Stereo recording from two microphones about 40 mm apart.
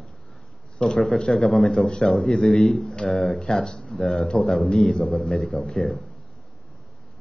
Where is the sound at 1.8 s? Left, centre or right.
Centre.